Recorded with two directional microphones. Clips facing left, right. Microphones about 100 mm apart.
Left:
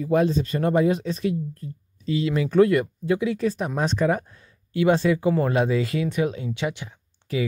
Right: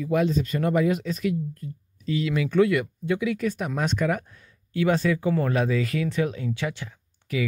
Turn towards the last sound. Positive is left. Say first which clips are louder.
# left 2 dB
turn(degrees=30)  # may be behind; listen again after turning